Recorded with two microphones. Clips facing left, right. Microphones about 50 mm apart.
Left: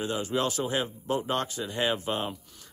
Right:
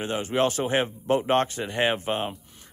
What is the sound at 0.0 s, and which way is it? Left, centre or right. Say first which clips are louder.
Speech: right 4 dB; right.